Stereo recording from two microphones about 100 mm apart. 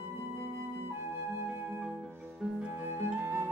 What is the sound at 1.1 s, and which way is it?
Flute, 25° right (ahead or behind).